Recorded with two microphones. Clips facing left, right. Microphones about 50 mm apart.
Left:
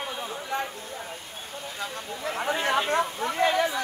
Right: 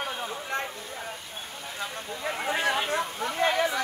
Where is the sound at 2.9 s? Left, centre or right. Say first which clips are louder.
Left 3 dB; left.